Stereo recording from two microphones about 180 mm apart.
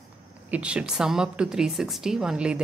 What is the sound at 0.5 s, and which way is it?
A woman's voice, 5° right (ahead or behind).